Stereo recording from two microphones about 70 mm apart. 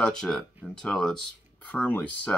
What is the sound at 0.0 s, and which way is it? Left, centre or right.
Speech, centre.